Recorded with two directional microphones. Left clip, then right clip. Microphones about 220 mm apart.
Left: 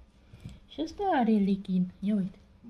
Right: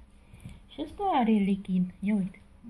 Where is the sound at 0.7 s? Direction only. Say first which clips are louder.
Even; 15° left (ahead or behind).